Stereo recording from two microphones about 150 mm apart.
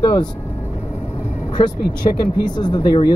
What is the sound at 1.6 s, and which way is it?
Speech, 30° left (ahead or behind).